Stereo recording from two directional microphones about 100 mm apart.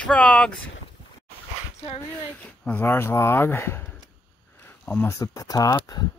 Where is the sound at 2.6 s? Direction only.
20° left (ahead or behind).